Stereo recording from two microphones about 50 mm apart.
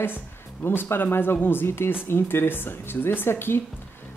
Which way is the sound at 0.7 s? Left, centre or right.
Left.